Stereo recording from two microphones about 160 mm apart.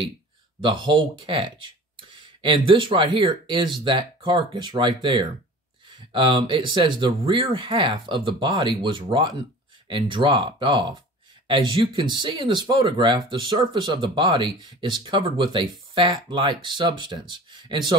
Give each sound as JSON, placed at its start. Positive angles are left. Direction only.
{"t": 0.6, "sound": "speech", "side_deg": -30}